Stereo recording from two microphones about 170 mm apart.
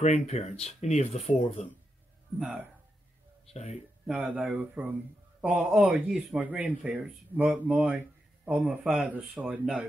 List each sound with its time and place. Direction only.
0.0 s speech: 40° left (ahead or behind)
2.3 s speech: 10° right (ahead or behind)
3.5 s speech: 40° left (ahead or behind)
4.1 s speech: 5° right (ahead or behind)